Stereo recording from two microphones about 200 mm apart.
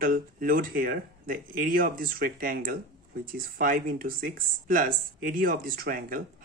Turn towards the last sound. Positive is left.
turn(degrees=-45)  # may be behind; listen again after turning